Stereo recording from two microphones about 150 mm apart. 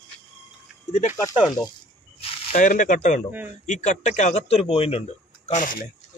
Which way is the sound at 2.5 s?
60° left (ahead or behind).